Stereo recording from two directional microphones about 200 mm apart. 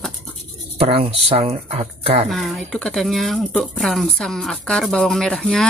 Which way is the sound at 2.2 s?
Centre (ahead or behind).